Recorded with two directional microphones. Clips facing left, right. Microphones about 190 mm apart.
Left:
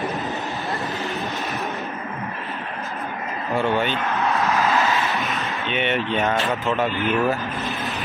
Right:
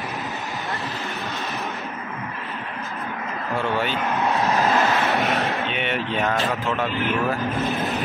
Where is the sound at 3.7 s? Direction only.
5° right (ahead or behind).